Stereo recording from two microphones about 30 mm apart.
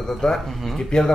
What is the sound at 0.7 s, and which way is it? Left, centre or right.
Speech, left.